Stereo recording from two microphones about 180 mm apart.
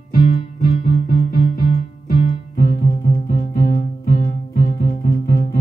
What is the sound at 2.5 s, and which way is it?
Music, 50° left (ahead or behind).